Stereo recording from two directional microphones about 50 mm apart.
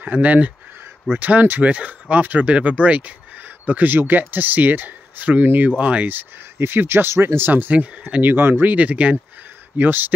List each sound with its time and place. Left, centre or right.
0.0 s speech: right
6.1 s speech: right
8.2 s speech: right
8.7 s speech: right
9.8 s speech: right